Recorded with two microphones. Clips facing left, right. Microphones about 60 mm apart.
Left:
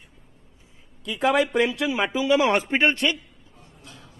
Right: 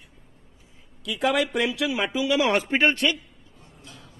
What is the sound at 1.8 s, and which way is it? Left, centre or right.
Speech, left.